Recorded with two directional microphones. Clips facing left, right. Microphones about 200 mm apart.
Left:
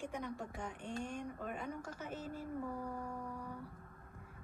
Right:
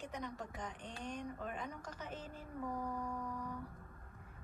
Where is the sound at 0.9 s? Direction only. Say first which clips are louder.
Left 5 dB; 50° left (ahead or behind).